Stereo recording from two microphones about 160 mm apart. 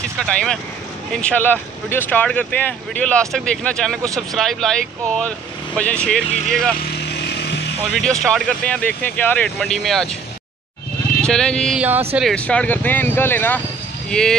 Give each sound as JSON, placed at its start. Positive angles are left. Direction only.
{"t": 0.2, "sound": "speech", "side_deg": 5}
{"t": 6.2, "sound": "speech", "side_deg": 45}
{"t": 6.5, "sound": "speech", "side_deg": 5}
{"t": 6.8, "sound": "vehicle", "side_deg": 90}
{"t": 7.9, "sound": "speech", "side_deg": 5}
{"t": 11.1, "sound": "speech", "side_deg": 5}